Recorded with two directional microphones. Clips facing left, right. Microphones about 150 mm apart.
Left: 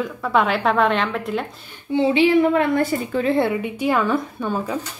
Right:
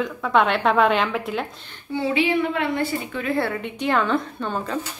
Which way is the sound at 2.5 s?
40° left (ahead or behind).